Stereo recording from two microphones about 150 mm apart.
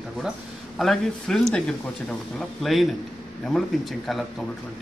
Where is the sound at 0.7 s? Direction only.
Centre (ahead or behind).